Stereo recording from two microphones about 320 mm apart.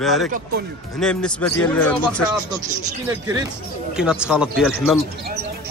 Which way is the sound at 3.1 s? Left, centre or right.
Centre.